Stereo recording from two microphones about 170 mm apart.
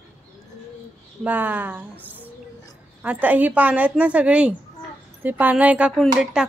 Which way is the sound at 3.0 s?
10° right (ahead or behind).